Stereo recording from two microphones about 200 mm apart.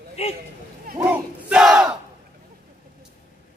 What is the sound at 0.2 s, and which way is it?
Speech, 30° left (ahead or behind).